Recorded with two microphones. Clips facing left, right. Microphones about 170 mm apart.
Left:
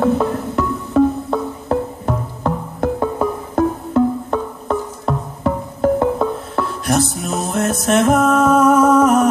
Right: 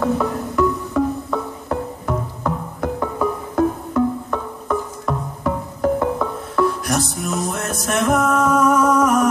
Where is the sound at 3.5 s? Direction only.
30° left (ahead or behind).